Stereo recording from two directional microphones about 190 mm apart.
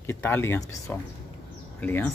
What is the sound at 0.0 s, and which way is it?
Speech, 10° left (ahead or behind).